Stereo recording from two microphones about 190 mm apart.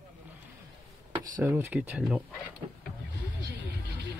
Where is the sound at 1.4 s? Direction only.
10° right (ahead or behind).